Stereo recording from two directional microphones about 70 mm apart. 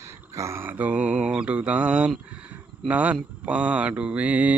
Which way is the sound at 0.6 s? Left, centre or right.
Right.